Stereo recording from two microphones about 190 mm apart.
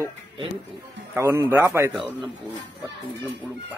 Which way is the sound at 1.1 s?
10° right (ahead or behind).